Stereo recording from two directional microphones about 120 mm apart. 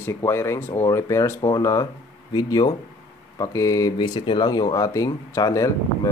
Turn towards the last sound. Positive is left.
turn(degrees=25)  # may be behind; listen again after turning